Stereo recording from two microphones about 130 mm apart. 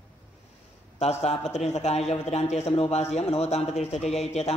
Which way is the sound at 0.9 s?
55° left (ahead or behind).